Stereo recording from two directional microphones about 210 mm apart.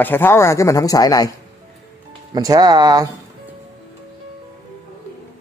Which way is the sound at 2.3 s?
20° right (ahead or behind).